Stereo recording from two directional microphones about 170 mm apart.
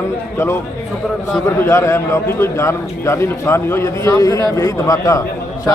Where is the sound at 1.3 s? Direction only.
15° left (ahead or behind).